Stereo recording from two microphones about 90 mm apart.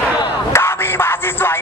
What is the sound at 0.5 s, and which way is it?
Music, 25° left (ahead or behind).